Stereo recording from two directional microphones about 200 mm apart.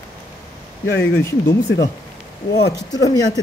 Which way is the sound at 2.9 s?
20° left (ahead or behind).